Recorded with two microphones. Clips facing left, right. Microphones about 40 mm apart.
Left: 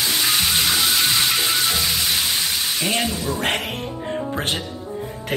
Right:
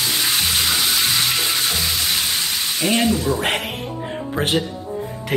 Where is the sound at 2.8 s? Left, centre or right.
Centre.